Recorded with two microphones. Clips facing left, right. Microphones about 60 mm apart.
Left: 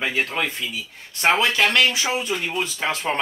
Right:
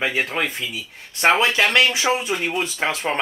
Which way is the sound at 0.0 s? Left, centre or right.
Centre.